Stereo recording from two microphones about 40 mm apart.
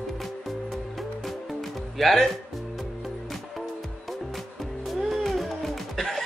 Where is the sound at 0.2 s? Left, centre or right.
Centre.